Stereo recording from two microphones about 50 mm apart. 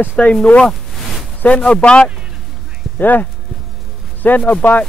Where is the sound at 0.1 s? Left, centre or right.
Left.